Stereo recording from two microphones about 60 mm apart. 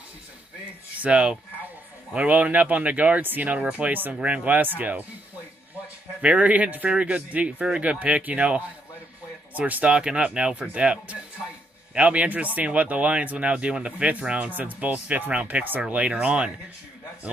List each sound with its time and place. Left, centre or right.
0.9 s speech: right
6.2 s speech: right